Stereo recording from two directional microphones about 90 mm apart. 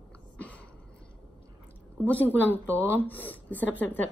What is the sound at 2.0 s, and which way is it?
Speech, 15° left (ahead or behind).